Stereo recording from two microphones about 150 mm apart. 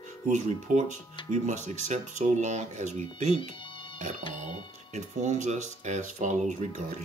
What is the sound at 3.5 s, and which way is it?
Music, 35° left (ahead or behind).